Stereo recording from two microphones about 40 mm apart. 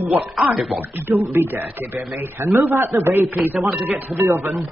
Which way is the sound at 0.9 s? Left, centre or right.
Right.